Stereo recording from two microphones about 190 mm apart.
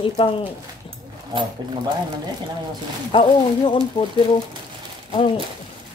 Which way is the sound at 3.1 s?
25° left (ahead or behind).